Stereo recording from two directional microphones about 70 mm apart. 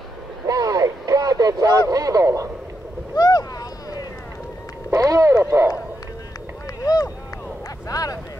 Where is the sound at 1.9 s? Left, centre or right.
Right.